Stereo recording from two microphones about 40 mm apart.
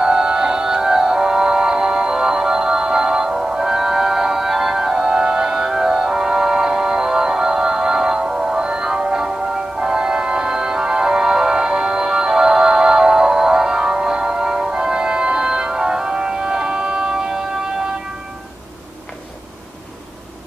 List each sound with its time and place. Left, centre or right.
0.0 s music: centre